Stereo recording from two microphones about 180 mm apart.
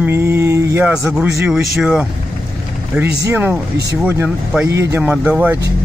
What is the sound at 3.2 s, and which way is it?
Speech, 10° right (ahead or behind).